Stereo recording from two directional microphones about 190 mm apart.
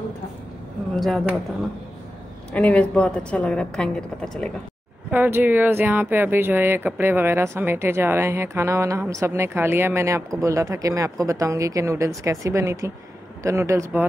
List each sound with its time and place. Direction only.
0.9 s a woman's voice: centre (ahead or behind)
2.5 s a woman's voice: 5° left (ahead or behind)
5.1 s speech: 10° right (ahead or behind)